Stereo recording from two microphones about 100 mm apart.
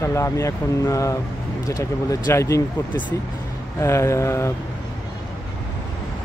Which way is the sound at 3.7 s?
30° left (ahead or behind).